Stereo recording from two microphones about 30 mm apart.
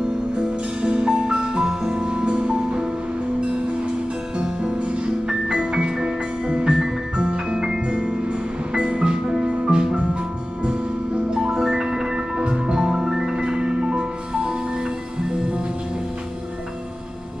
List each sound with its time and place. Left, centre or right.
0.8 s music: right
2.0 s music: right
5.3 s music: right
11.6 s music: centre
12.4 s music: right